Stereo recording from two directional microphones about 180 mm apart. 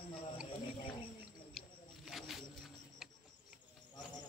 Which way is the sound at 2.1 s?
Centre (ahead or behind).